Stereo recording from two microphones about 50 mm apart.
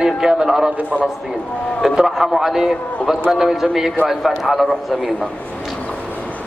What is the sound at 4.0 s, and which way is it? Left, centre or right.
Speech, right.